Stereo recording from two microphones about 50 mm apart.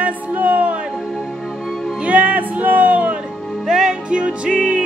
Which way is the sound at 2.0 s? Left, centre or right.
Right.